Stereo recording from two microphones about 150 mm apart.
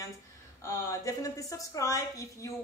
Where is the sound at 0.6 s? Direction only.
20° left (ahead or behind).